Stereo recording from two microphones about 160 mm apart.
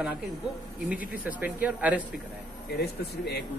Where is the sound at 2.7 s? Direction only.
90° left.